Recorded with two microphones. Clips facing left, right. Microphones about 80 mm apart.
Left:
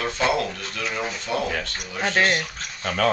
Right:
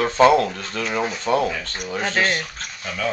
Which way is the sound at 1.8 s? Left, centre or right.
Centre.